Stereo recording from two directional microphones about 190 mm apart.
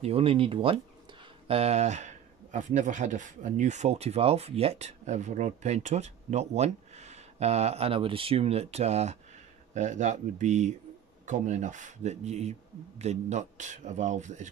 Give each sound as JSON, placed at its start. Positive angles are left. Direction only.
{"t": 0.0, "sound": "speech", "side_deg": -30}